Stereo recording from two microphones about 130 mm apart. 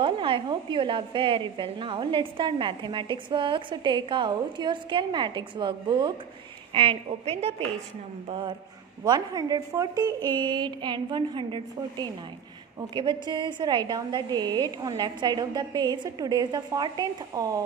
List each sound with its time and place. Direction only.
0.0 s a woman's voice: 40° right (ahead or behind)